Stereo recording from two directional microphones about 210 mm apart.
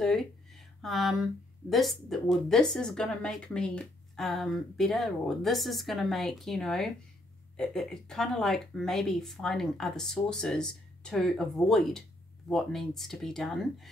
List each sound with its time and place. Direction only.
0.8 s speech: centre (ahead or behind)